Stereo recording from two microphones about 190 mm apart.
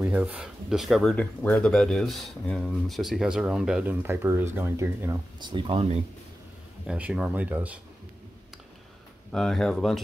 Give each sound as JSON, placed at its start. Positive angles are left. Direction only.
{"t": 0.0, "sound": "speech", "side_deg": -5}
{"t": 5.4, "sound": "speech", "side_deg": -25}
{"t": 6.9, "sound": "speech", "side_deg": -5}
{"t": 9.3, "sound": "speech", "side_deg": 5}